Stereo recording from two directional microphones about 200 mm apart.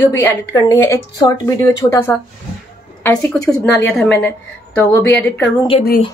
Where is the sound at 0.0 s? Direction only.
10° left (ahead or behind).